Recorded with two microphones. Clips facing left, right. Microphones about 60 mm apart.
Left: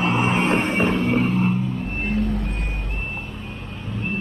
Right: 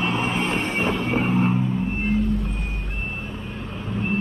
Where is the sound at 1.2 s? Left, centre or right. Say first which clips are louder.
Even; centre.